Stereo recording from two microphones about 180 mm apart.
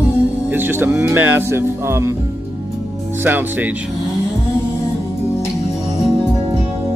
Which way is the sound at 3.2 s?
10° right (ahead or behind).